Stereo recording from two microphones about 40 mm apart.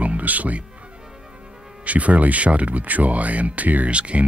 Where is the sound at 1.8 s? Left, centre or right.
Right.